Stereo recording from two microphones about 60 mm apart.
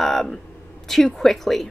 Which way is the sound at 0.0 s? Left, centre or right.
Centre.